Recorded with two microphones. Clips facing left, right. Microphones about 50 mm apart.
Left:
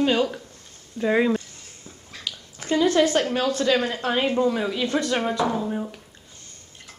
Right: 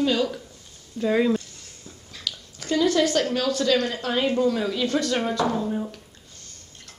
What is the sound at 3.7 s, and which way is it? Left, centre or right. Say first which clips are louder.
A woman's voice: left 1 dB; centre.